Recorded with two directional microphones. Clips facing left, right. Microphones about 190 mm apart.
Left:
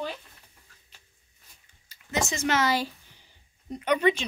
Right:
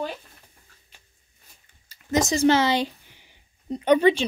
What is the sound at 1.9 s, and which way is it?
Speech, 40° right (ahead or behind).